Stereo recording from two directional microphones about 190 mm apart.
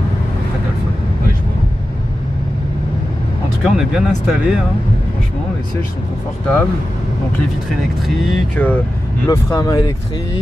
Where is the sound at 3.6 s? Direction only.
5° right (ahead or behind).